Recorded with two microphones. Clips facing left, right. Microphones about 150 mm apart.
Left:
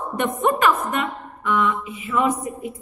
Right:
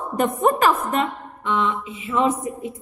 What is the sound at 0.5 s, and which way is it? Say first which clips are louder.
A woman's voice: left 1 dB; 35° right (ahead or behind).